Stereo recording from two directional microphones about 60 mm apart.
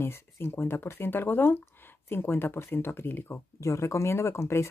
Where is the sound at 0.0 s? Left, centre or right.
Left.